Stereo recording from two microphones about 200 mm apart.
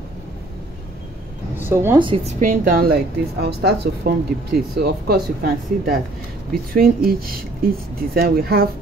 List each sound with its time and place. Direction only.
1.6 s speech: 10° right (ahead or behind)
2.0 s a woman's voice: 25° right (ahead or behind)
2.4 s a woman's voice: 40° right (ahead or behind)